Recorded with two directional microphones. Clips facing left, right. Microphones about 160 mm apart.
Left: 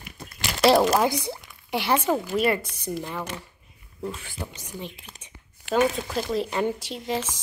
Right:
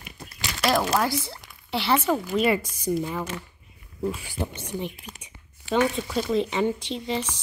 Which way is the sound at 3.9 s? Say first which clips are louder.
Right 4 dB; 10° right (ahead or behind).